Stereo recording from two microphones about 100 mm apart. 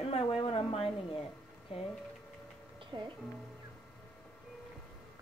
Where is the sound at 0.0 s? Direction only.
75° left (ahead or behind).